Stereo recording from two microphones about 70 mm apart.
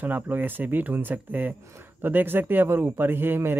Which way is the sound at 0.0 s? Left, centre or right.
Right.